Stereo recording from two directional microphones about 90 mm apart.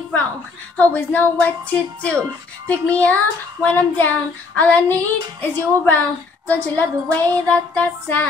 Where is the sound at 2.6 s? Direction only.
15° left (ahead or behind).